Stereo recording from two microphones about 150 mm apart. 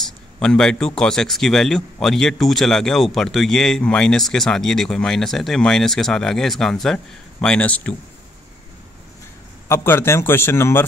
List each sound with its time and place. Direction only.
0.0 s a man's voice: 5° left (ahead or behind)
9.7 s a man's voice: 15° left (ahead or behind)